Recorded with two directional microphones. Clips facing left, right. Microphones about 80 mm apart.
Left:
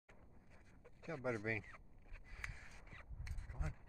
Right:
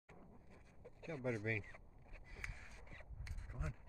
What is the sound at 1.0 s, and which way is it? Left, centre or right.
Speech, centre.